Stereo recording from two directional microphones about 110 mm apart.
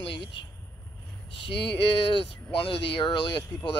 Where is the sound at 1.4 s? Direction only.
55° left (ahead or behind).